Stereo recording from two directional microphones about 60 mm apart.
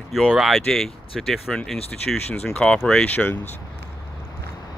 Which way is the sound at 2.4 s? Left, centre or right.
Centre.